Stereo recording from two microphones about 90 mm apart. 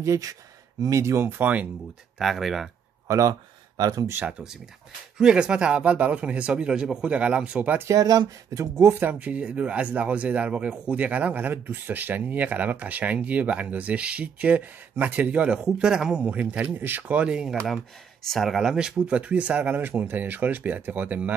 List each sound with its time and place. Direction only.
0.0 s speech: 35° right (ahead or behind)
1.4 s speech: 15° right (ahead or behind)
2.1 s speech: centre (ahead or behind)
3.1 s speech: 40° right (ahead or behind)
4.3 s speech: 10° right (ahead or behind)
7.9 s speech: 45° right (ahead or behind)
9.0 s speech: 15° right (ahead or behind)
18.2 s speech: centre (ahead or behind); by 21.4 s 20° right (ahead or behind)